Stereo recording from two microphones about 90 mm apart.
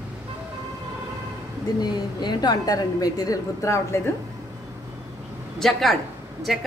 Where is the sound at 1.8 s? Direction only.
55° left (ahead or behind); by 4.0 s 35° left (ahead or behind).